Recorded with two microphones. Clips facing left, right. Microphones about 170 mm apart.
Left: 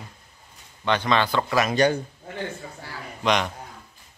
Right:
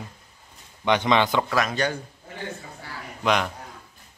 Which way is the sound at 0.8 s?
15° right (ahead or behind).